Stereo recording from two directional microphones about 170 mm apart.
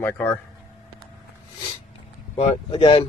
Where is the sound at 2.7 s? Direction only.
35° left (ahead or behind).